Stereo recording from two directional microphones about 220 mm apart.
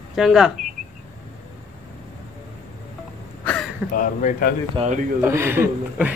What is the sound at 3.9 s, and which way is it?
Speech, 35° left (ahead or behind).